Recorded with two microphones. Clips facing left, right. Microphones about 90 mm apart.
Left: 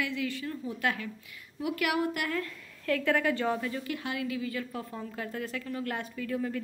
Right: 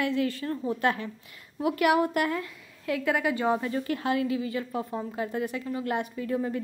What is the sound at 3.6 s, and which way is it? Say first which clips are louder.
A woman's voice: right 5 dB; 35° right (ahead or behind).